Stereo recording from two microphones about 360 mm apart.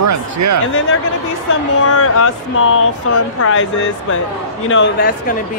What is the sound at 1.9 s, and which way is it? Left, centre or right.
Speech, left.